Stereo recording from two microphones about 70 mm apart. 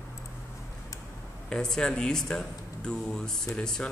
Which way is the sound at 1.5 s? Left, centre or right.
Centre.